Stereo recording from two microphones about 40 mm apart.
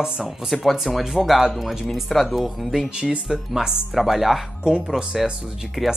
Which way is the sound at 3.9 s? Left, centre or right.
Centre.